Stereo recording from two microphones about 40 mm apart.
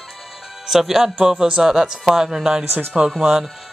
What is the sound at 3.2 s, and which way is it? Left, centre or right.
Speech, centre.